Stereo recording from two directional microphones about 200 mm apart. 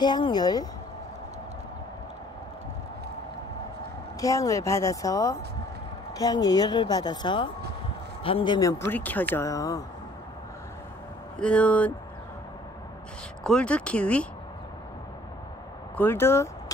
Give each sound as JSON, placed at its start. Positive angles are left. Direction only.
{"t": 0.0, "sound": "a woman's voice", "side_deg": 20}
{"t": 4.2, "sound": "a woman's voice", "side_deg": 15}
{"t": 11.3, "sound": "a woman's voice", "side_deg": 5}
{"t": 13.4, "sound": "speech", "side_deg": 5}
{"t": 16.0, "sound": "speech", "side_deg": 10}